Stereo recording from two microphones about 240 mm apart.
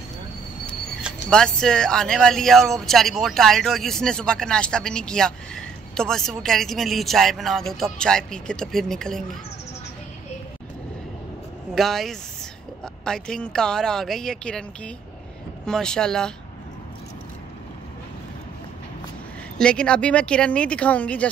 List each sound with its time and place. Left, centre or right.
1.3 s speech: centre
11.7 s speech: centre
15.6 s speech: centre
19.6 s speech: centre